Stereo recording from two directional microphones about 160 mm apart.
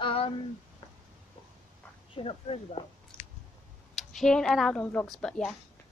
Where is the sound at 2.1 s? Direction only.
40° left (ahead or behind).